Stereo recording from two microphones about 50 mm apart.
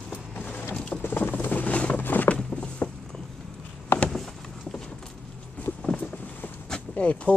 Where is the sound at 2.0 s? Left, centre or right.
Left.